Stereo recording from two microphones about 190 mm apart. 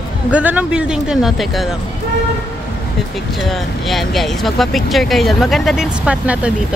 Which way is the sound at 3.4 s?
Centre (ahead or behind).